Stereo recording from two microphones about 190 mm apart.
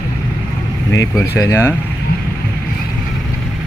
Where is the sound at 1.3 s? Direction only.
15° left (ahead or behind).